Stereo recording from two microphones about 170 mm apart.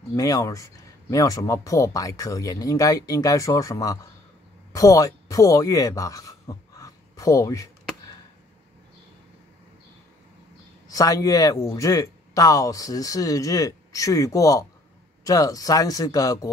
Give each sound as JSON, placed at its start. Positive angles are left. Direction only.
{"t": 0.1, "sound": "speech", "side_deg": 20}
{"t": 10.9, "sound": "speech", "side_deg": 20}